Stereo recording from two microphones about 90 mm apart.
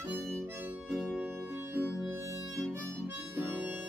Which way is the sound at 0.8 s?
5° right (ahead or behind).